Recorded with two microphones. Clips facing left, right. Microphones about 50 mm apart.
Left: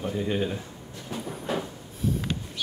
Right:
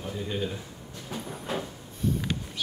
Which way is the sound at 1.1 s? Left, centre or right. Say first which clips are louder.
Left 3 dB; centre.